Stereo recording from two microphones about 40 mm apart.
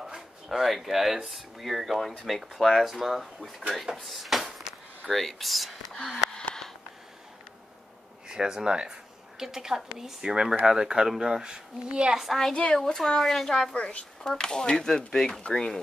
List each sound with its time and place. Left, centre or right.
0.5 s speech: centre
3.8 s drawer open or close: centre
5.1 s speech: centre
8.3 s a woman's voice: centre
12.2 s speech: centre
13.7 s speech: left
14.2 s speech: centre